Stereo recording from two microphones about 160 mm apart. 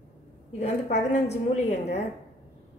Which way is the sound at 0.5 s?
45° left (ahead or behind).